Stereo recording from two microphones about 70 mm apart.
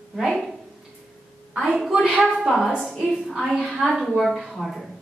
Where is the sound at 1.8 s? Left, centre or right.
Centre.